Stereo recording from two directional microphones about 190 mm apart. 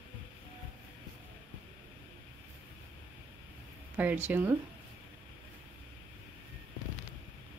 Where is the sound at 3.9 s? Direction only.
10° right (ahead or behind).